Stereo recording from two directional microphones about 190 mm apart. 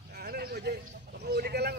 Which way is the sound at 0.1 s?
55° right (ahead or behind).